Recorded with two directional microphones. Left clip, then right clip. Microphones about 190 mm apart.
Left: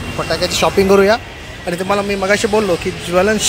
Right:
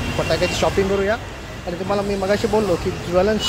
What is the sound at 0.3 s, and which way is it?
Speech, 10° left (ahead or behind).